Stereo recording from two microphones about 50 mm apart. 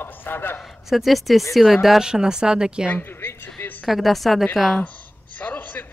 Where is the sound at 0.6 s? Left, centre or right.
Centre.